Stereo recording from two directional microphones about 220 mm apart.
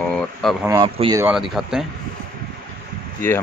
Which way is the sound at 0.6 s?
15° right (ahead or behind).